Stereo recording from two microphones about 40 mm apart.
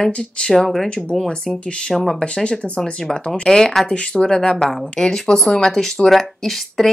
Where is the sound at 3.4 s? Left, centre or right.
Centre.